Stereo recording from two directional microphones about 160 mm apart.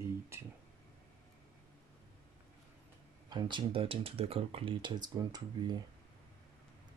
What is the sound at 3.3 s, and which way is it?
Speech, 30° right (ahead or behind).